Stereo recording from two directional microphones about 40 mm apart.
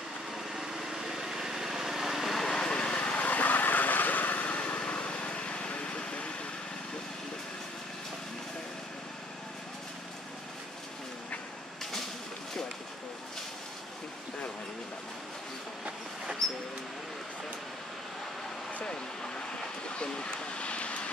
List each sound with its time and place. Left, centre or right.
0.5 s vehicle: centre
2.4 s vehicle: centre; by 4.5 s left
4.5 s vehicle: left
16.4 s a sound: centre
18.9 s vehicle: left